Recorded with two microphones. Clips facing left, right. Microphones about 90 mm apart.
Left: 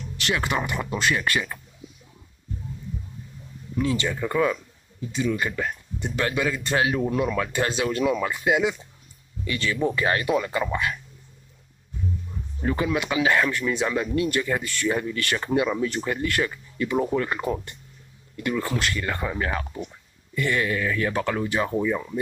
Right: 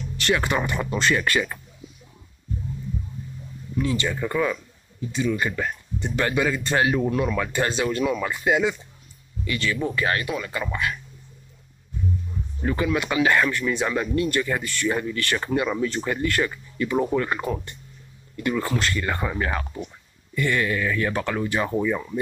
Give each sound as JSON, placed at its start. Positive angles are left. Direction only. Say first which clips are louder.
{"t": 0.5, "sound": "speech", "louder": "right 2 dB", "side_deg": 5}
{"t": 4.2, "sound": "speech", "louder": "left 1 dB", "side_deg": 5}
{"t": 9.4, "sound": "speech", "louder": "left 1 dB", "side_deg": 25}
{"t": 12.6, "sound": "speech", "louder": "right 1 dB", "side_deg": 15}
{"t": 15.7, "sound": "speech", "louder": "right 1 dB", "side_deg": 5}
{"t": 20.3, "sound": "speech", "louder": "right 1 dB", "side_deg": 10}